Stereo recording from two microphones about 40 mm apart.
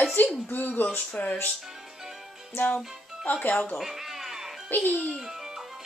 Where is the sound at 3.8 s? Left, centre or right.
Centre.